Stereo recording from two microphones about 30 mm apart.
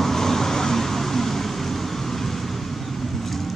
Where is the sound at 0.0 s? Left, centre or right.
Centre.